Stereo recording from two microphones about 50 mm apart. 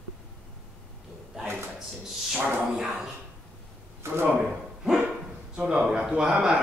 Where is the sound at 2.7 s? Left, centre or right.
Centre.